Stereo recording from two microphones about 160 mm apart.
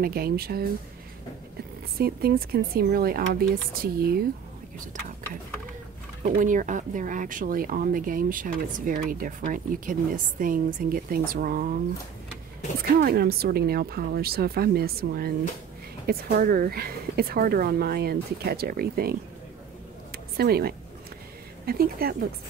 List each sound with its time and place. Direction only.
0.0 s speech: 70° right (ahead or behind)
2.0 s speech: 70° right (ahead or behind)
6.3 s speech: 55° right (ahead or behind)
13.0 s speech: 75° right (ahead or behind)
20.1 s a sound: 75° right (ahead or behind)
21.6 s speech: 70° right (ahead or behind)